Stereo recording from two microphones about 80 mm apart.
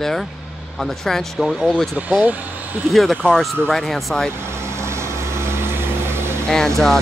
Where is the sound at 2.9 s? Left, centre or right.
Centre.